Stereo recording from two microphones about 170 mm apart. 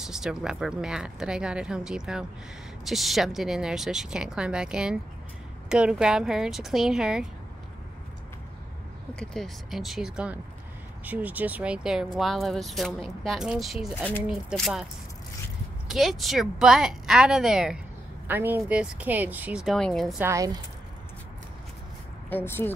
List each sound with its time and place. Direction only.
0.0 s speech: 5° right (ahead or behind)
9.1 s speech: 5° left (ahead or behind)
15.9 s speech: centre (ahead or behind)
20.2 s speech: 15° right (ahead or behind)
22.3 s speech: 10° left (ahead or behind)